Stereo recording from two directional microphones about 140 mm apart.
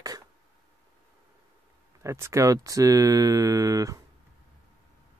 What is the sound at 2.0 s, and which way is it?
Speech, 20° right (ahead or behind).